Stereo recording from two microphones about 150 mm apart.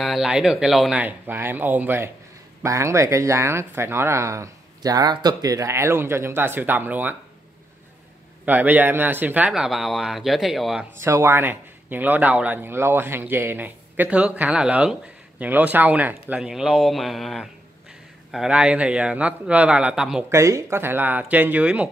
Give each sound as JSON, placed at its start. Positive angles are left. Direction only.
{"t": 0.0, "sound": "a man's voice", "side_deg": 0}
{"t": 1.0, "sound": "speech", "side_deg": -15}
{"t": 8.5, "sound": "a man's voice", "side_deg": -10}
{"t": 11.0, "sound": "speech", "side_deg": -15}
{"t": 20.2, "sound": "speech", "side_deg": -20}